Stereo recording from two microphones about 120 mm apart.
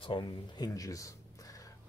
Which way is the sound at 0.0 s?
40° left (ahead or behind).